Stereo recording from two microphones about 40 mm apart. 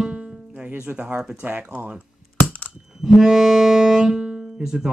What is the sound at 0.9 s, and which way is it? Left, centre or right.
Speech, right.